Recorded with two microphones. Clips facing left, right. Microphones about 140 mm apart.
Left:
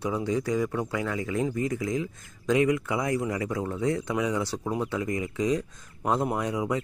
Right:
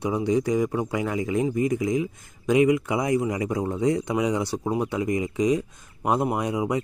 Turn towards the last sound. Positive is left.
turn(degrees=-15)  # may be behind; listen again after turning